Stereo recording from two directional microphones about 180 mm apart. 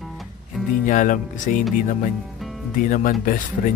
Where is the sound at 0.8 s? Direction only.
45° left (ahead or behind).